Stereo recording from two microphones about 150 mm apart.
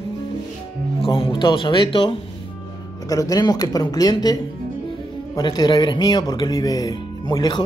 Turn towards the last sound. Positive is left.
turn(degrees=25)  # may be behind; listen again after turning